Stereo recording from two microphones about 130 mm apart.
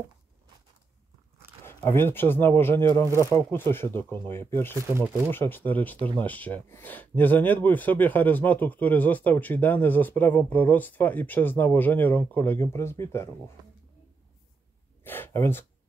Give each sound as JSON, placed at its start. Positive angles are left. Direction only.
{"t": 1.6, "sound": "speech", "side_deg": 20}
{"t": 4.7, "sound": "speech", "side_deg": -15}
{"t": 5.3, "sound": "speech", "side_deg": 15}
{"t": 15.0, "sound": "a sound", "side_deg": 15}